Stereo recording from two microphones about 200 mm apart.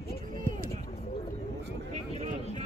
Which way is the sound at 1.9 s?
35° right (ahead or behind).